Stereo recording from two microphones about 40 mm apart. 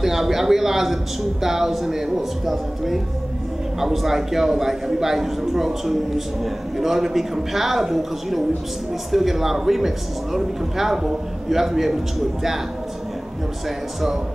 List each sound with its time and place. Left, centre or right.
0.0 s a man's voice: centre